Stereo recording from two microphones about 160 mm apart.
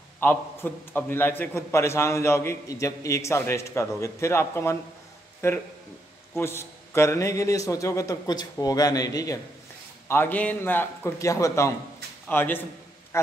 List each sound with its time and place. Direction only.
0.2 s a man's voice: 10° left (ahead or behind)